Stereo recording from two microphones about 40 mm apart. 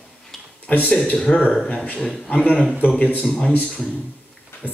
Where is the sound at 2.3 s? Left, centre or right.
Left.